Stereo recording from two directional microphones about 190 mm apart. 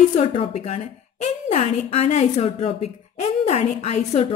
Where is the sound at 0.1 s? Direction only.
35° left (ahead or behind).